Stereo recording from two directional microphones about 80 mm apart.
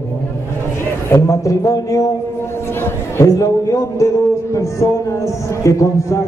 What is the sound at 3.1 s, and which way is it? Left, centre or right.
A man's voice, left.